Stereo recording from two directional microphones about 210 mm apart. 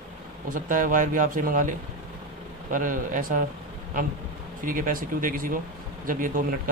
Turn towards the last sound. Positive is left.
turn(degrees=-40)  # may be behind; listen again after turning